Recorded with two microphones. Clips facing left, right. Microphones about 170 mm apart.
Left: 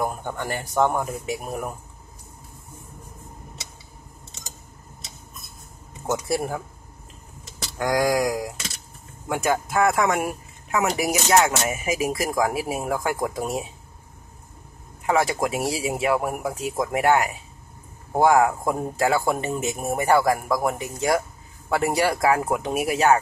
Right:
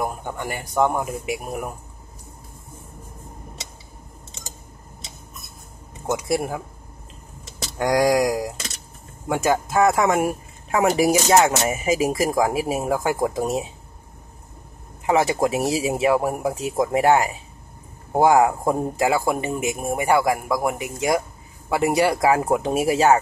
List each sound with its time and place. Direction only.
0.0 s a man's voice: 5° right (ahead or behind)
6.0 s a man's voice: 15° right (ahead or behind)
7.8 s speech: 20° right (ahead or behind)
15.0 s a man's voice: 20° right (ahead or behind); by 20.7 s 5° right (ahead or behind)
20.7 s a man's voice: 15° right (ahead or behind)